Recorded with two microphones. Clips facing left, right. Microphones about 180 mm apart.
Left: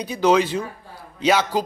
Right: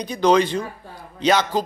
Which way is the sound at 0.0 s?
5° left (ahead or behind).